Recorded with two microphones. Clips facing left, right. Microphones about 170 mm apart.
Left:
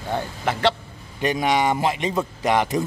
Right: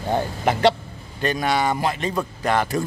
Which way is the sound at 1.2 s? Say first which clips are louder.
Left 1 dB; 20° left (ahead or behind).